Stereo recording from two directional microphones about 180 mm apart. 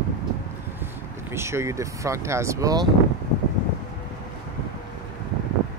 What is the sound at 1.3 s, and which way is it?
Speech, 15° right (ahead or behind).